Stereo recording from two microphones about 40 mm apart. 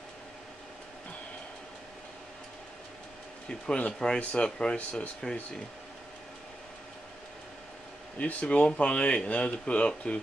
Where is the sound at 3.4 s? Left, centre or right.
Left.